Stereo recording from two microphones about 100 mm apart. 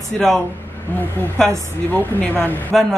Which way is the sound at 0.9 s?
15° left (ahead or behind).